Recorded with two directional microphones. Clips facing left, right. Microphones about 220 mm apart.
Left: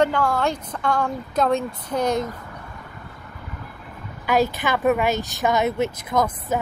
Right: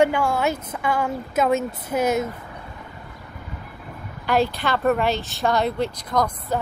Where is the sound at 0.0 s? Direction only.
10° right (ahead or behind).